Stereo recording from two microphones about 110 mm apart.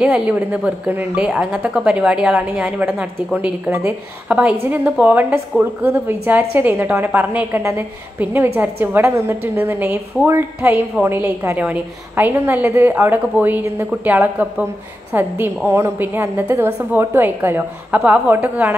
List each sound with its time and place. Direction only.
0.0 s a woman's voice: 10° right (ahead or behind)
4.4 s a woman's voice: 10° right (ahead or behind)